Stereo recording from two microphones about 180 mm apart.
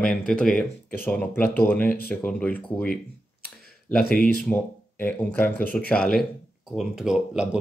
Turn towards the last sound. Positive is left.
turn(degrees=-5)  # may be behind; listen again after turning